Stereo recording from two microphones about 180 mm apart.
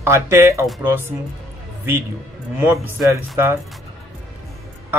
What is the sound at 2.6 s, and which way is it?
A man's voice, 15° right (ahead or behind).